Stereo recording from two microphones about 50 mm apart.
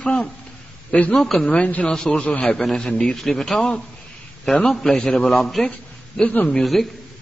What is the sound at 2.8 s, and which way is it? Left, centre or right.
Speech, centre.